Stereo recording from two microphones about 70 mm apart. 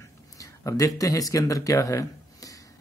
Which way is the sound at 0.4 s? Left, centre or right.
Left.